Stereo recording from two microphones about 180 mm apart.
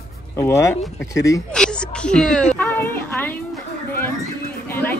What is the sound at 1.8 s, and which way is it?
Speech, 5° left (ahead or behind).